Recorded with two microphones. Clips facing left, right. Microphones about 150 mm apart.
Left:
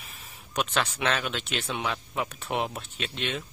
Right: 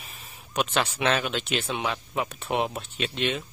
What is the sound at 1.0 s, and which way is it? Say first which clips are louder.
Speech: right 3 dB; 5° right (ahead or behind).